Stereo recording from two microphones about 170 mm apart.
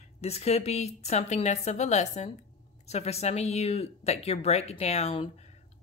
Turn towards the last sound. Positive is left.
turn(degrees=35)  # may be behind; listen again after turning